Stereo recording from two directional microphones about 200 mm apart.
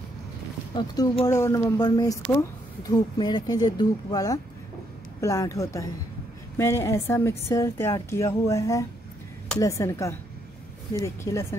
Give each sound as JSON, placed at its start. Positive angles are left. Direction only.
{"t": 0.7, "sound": "speech", "side_deg": 20}